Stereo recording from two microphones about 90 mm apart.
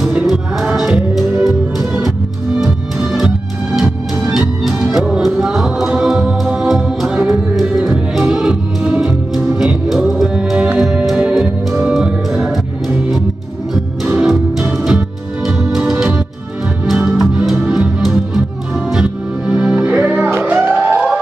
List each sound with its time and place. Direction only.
0.0 s music: 5° right (ahead or behind)
14.0 s music: 5° right (ahead or behind)
20.8 s police car: 10° right (ahead or behind)